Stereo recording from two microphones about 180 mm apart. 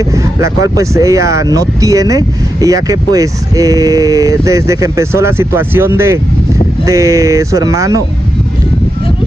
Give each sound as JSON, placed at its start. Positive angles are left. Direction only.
{"t": 0.1, "sound": "speech", "side_deg": -20}